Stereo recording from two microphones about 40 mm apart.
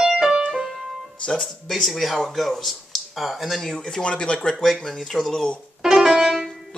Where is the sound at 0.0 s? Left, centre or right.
Centre.